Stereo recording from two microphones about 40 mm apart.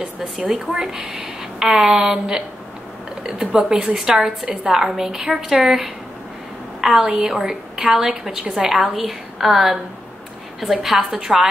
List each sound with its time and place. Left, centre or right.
0.0 s a woman's voice: right
0.5 s a woman's voice: centre